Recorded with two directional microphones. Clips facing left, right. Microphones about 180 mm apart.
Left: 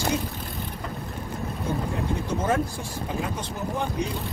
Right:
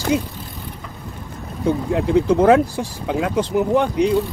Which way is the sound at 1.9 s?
85° right.